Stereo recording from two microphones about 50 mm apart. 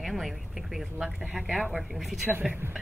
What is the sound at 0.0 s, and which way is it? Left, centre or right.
Speech, centre.